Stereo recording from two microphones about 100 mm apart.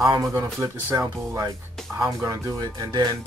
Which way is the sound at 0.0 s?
30° right (ahead or behind).